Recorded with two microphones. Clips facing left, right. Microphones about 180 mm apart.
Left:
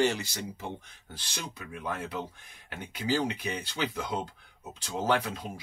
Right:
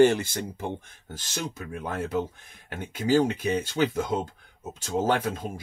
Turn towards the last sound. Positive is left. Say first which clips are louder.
# right 4 dB
turn(degrees=-50)  # may be behind; listen again after turning